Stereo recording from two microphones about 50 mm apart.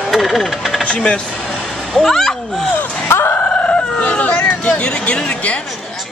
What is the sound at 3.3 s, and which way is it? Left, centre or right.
Chicken, left.